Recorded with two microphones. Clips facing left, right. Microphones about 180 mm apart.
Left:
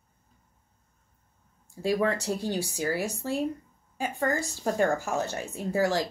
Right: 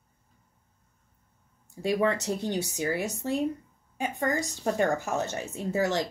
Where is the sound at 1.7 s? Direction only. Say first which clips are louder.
Even; 20° right (ahead or behind).